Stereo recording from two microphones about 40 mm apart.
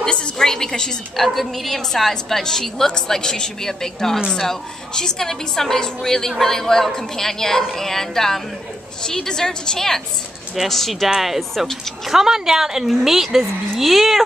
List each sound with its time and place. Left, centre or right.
0.0 s a woman's voice: centre
1.1 s a woman's voice: centre
12.1 s a woman's voice: centre